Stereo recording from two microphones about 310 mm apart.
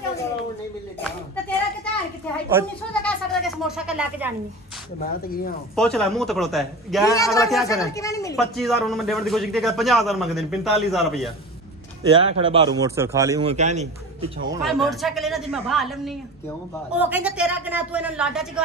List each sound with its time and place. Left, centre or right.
2.6 s a man's voice: centre
2.9 s goat: centre
5.0 s speech: left
5.8 s a woman's voice: centre
7.1 s speech: centre
8.5 s a woman's voice: centre
12.1 s a man's voice: centre
14.6 s a woman's voice: centre